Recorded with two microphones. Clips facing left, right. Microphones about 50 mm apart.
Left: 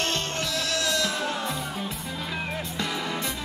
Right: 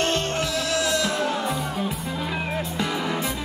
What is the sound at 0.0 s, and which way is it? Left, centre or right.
Music, centre.